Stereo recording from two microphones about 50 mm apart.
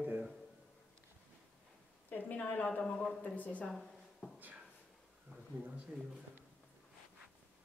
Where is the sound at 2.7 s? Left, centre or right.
Left.